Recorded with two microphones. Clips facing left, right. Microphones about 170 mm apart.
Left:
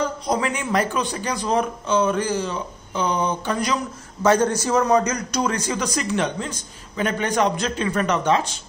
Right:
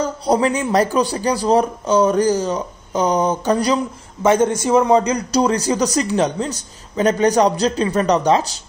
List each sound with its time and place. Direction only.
0.0 s a man's voice: 35° right (ahead or behind)